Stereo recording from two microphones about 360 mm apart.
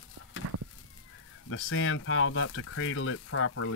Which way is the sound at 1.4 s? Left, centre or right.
Left.